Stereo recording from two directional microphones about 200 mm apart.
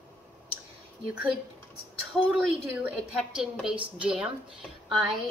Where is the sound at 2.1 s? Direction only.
Centre (ahead or behind).